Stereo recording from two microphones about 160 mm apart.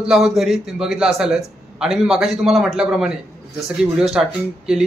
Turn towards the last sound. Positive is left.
turn(degrees=-5)  # may be behind; listen again after turning